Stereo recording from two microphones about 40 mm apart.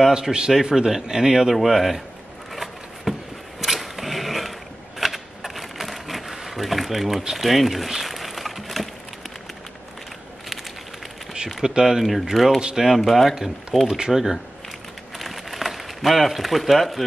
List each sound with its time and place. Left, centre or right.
0.0 s speech: centre
1.5 s speech: centre
2.5 s a sound: centre
3.6 s mechanisms: centre
11.3 s speech: centre
12.0 s speech: centre
13.8 s speech: centre
14.1 s speech: centre
15.1 s a sound: centre